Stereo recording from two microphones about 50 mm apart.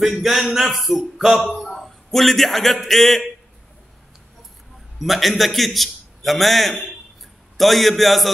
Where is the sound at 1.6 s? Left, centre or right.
Centre.